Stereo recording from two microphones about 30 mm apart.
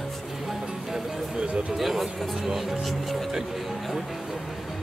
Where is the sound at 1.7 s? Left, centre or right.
Centre.